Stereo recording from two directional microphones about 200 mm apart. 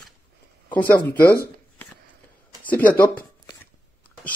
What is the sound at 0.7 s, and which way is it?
Speech, 10° left (ahead or behind).